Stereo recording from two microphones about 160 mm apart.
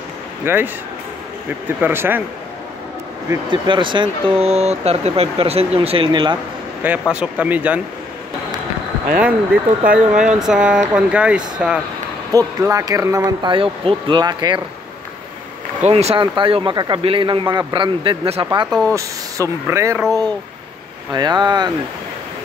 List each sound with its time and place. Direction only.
0.5 s speech: 15° right (ahead or behind)
1.8 s speech: 15° right (ahead or behind)
3.4 s speech: 30° right (ahead or behind)
6.8 s speech: 10° right (ahead or behind)
9.8 s speech: 5° right (ahead or behind)
12.3 s speech: 20° right (ahead or behind)
15.8 s speech: 40° right (ahead or behind)
18.7 s speech: 5° left (ahead or behind)
18.9 s speech: 20° right (ahead or behind)